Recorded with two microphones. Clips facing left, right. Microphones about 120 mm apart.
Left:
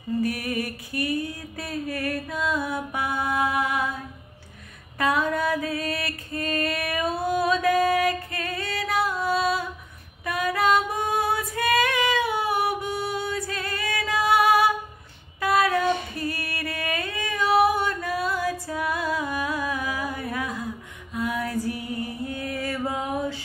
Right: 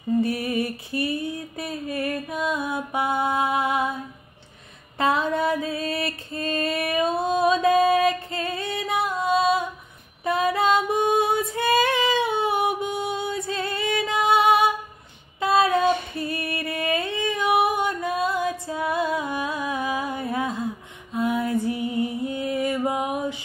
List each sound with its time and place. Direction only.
0.2 s music: 25° right (ahead or behind)
4.9 s music: 25° right (ahead or behind)
10.2 s female singing: 25° right (ahead or behind)